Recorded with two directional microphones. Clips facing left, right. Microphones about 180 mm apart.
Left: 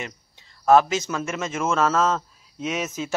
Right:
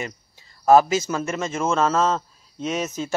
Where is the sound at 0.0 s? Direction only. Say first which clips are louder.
Right 3 dB; 5° right (ahead or behind).